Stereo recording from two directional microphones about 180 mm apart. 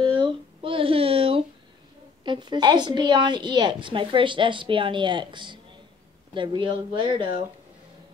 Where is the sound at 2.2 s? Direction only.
25° right (ahead or behind).